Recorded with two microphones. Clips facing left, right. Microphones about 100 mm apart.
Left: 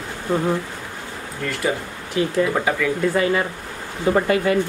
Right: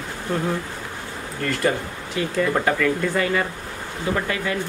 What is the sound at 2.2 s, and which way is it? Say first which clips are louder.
Speech: left 2 dB; 5° left (ahead or behind).